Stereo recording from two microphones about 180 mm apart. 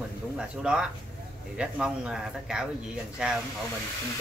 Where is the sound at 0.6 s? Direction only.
5° right (ahead or behind).